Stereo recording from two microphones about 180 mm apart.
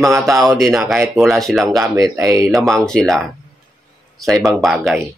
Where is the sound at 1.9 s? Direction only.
15° right (ahead or behind).